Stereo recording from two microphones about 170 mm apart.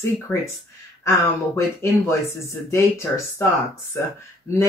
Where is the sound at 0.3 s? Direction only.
10° left (ahead or behind).